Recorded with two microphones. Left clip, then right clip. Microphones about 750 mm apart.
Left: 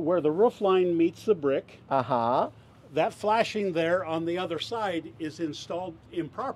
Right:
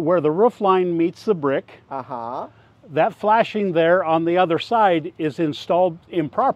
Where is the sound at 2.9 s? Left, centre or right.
Right.